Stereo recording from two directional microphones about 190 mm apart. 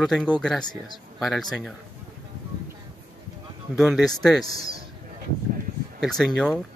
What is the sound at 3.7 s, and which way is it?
Speech, centre (ahead or behind).